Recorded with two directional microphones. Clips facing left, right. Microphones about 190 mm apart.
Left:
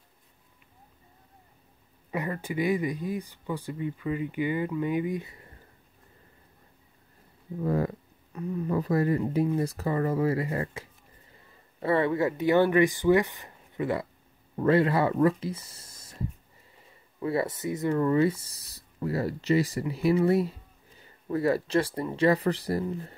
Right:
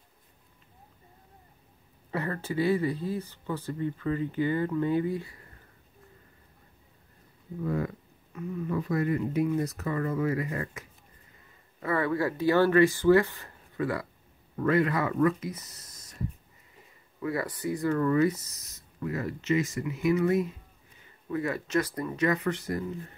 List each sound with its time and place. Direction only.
2.0 s speech: 15° left (ahead or behind)
7.6 s speech: 35° left (ahead or behind)
17.2 s speech: 25° left (ahead or behind)